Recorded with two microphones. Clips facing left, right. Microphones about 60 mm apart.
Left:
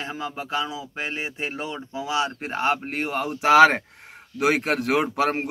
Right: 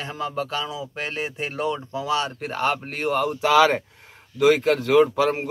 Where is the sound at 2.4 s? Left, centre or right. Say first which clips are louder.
Even; left.